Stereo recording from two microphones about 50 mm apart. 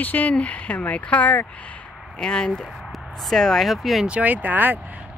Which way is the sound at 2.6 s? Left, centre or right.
Centre.